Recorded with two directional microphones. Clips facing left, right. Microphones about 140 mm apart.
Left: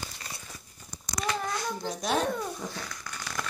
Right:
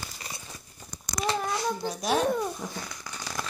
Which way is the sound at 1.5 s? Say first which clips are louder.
Right 3 dB; 10° right (ahead or behind).